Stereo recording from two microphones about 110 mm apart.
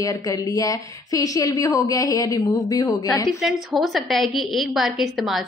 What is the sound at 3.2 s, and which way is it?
A woman's voice, 5° right (ahead or behind).